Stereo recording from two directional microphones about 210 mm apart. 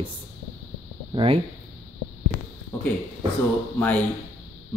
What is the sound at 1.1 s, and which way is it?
Speech, 25° right (ahead or behind).